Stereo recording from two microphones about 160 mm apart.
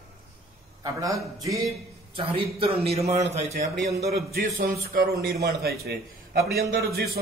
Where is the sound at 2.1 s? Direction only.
35° right (ahead or behind).